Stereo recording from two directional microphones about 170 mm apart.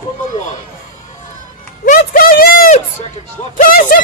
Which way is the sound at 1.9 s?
55° left (ahead or behind).